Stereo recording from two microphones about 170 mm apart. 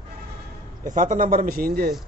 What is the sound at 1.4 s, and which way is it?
Speech, 60° right (ahead or behind).